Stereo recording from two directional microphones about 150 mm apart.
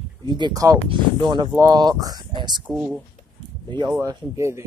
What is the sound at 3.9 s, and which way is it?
Speech, 20° right (ahead or behind).